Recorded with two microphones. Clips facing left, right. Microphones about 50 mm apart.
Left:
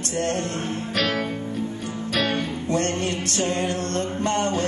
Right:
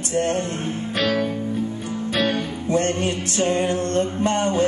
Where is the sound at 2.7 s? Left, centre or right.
Centre.